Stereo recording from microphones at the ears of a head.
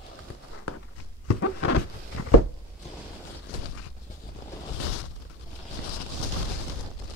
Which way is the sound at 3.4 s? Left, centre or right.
Left.